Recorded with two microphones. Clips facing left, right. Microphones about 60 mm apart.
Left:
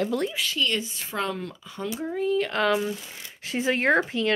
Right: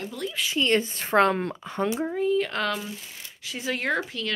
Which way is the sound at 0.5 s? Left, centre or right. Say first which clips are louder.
Right 4 dB; right.